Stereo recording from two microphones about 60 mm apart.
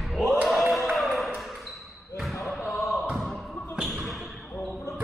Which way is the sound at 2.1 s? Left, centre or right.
Left.